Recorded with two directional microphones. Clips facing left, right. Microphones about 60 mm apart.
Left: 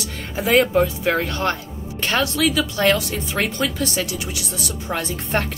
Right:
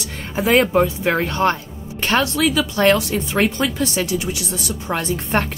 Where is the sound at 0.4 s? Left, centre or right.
Right.